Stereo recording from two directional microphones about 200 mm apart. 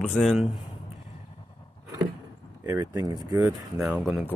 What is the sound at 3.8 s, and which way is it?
Speech, centre (ahead or behind).